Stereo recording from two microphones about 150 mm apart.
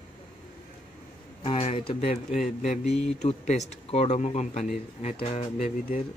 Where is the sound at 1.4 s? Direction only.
40° left (ahead or behind).